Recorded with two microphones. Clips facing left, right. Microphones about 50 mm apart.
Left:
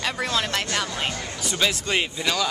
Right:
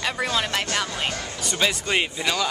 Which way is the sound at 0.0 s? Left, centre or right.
Centre.